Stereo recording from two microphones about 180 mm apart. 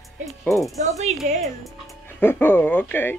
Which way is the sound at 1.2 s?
35° right (ahead or behind).